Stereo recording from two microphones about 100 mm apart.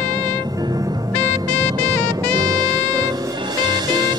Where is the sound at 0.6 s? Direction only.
40° right (ahead or behind).